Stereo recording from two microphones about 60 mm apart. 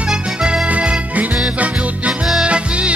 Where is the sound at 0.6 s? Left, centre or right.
Right.